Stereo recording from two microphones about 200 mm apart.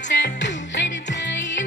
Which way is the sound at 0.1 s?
65° left (ahead or behind).